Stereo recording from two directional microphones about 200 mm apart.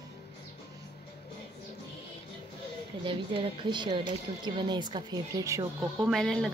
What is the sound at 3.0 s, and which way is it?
Speech, 25° right (ahead or behind).